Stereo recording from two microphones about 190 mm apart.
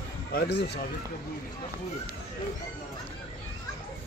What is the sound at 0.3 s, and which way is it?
Speech, 60° left (ahead or behind).